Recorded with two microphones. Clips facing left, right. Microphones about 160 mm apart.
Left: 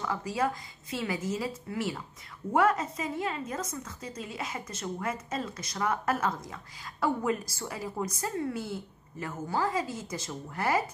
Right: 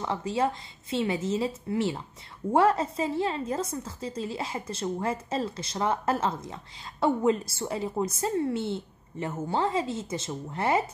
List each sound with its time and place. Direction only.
0.0 s a woman's voice: 25° right (ahead or behind)